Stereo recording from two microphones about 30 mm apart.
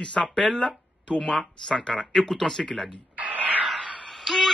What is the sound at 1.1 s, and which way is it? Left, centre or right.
Speech, left.